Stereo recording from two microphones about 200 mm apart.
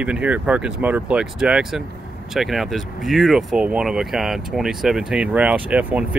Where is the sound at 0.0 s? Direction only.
5° right (ahead or behind).